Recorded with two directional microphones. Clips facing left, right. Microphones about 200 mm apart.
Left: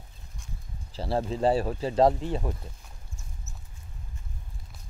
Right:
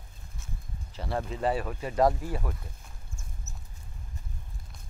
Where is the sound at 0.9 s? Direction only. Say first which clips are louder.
Left 5 dB; 30° left (ahead or behind).